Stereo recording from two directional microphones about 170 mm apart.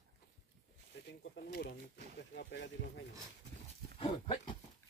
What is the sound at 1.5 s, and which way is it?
Speech, 70° left (ahead or behind).